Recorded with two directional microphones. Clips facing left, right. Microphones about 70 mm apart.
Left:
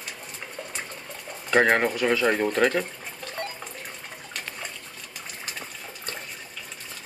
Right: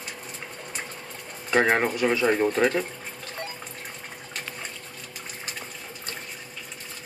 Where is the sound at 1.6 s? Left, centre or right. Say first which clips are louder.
Even; centre.